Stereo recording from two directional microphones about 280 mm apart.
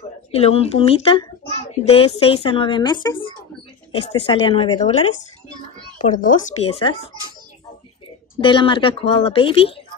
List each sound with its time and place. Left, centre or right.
0.3 s speech: left
6.1 s speech: left
8.4 s speech: centre